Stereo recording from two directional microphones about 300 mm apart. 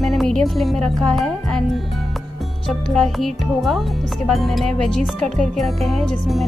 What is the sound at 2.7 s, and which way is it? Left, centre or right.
Speech, centre.